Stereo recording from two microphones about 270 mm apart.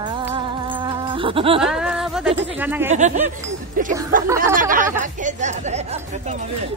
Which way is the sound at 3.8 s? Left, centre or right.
Right.